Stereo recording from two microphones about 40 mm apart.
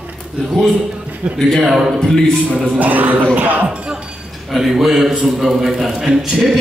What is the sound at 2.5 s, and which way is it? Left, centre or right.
Music, right.